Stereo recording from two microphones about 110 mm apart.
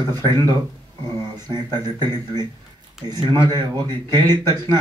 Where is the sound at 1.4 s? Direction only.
40° right (ahead or behind).